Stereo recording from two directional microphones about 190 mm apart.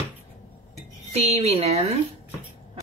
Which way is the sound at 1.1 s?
35° right (ahead or behind).